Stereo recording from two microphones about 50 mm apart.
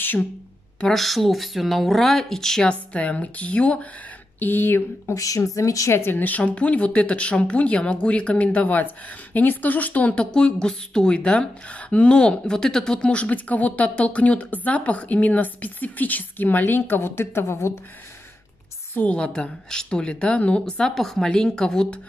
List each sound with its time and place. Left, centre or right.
0.9 s speech: centre
2.7 s a woman's voice: left
4.4 s speech: left
5.0 s speech: left
6.1 s a woman's voice: left
10.3 s a woman's voice: centre; by 17.7 s left
19.0 s a woman's voice: left
20.6 s speech: centre